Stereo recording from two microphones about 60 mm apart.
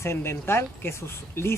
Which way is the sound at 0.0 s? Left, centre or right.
Left.